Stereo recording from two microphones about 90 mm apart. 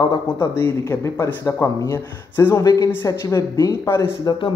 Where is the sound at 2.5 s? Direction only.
40° left (ahead or behind).